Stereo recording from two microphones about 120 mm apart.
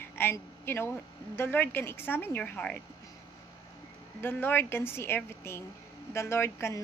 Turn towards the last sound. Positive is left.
turn(degrees=20)  # may be behind; listen again after turning